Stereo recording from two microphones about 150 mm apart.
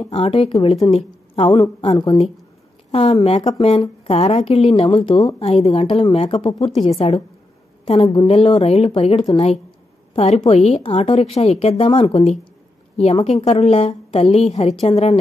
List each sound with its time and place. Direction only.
0.1 s a woman's voice: 40° left (ahead or behind)
1.8 s speech: 30° left (ahead or behind)
2.9 s a woman's voice: 40° left (ahead or behind)
5.4 s a woman's voice: 45° left (ahead or behind)